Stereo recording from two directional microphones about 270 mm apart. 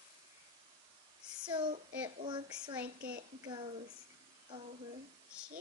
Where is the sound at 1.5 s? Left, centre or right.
Centre.